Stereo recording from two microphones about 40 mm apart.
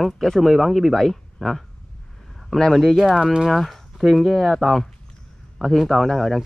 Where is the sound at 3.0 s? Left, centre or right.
Right.